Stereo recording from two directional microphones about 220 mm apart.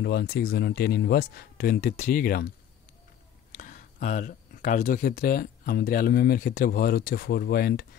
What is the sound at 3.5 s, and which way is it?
Speech, 35° left (ahead or behind).